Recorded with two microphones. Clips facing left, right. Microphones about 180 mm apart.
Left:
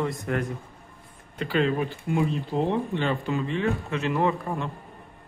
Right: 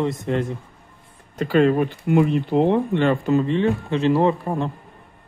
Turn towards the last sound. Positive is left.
turn(degrees=-35)  # may be behind; listen again after turning